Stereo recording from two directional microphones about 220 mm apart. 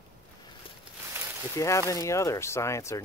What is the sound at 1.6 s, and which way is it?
Speech, 15° left (ahead or behind).